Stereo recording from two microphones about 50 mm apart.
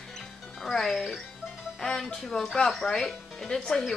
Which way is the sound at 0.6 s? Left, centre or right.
Centre.